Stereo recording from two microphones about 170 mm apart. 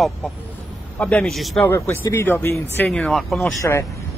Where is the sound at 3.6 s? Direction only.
15° left (ahead or behind).